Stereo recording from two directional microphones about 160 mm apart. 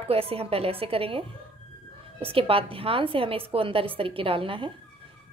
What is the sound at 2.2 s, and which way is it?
A woman's voice, 35° right (ahead or behind).